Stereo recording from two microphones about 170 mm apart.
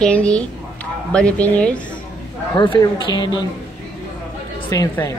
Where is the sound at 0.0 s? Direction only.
5° left (ahead or behind).